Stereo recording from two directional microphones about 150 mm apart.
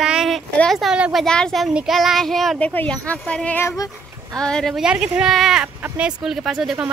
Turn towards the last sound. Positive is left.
turn(degrees=-5)  # may be behind; listen again after turning